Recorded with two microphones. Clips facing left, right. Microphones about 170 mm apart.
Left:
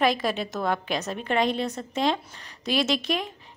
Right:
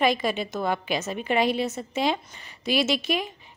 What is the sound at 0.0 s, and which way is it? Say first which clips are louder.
A woman's voice: even; centre (ahead or behind).